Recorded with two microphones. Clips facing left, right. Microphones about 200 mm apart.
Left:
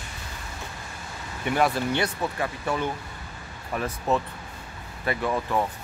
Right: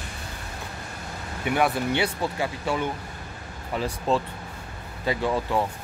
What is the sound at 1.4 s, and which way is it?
Speech, 5° right (ahead or behind).